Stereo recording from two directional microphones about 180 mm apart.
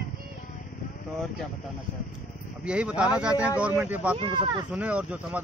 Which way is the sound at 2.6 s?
5° right (ahead or behind).